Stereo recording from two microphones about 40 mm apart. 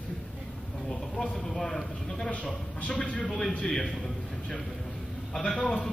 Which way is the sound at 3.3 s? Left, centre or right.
Centre.